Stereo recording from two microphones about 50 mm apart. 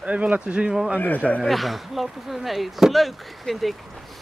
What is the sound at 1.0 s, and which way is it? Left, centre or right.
Speech, left.